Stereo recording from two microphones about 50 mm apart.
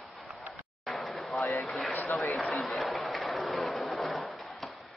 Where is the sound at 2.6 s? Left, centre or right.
Centre.